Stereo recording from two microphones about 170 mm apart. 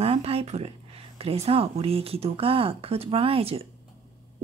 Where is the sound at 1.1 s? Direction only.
35° right (ahead or behind).